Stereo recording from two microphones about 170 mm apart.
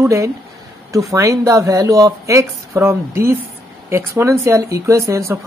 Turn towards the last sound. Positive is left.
turn(degrees=-15)  # may be behind; listen again after turning